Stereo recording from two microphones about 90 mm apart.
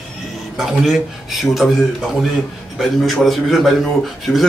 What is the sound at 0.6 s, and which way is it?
Speech, 5° right (ahead or behind).